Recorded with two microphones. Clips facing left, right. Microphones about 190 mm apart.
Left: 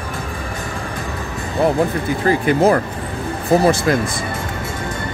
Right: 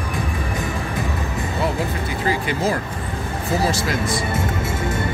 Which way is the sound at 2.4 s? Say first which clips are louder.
Left 8 dB; 60° left (ahead or behind).